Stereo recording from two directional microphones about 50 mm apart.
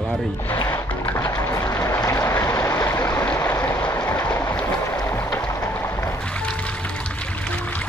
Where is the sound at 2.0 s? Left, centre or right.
Left.